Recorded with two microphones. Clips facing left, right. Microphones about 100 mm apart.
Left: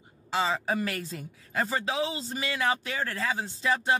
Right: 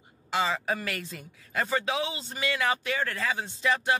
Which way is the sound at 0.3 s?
30° left (ahead or behind).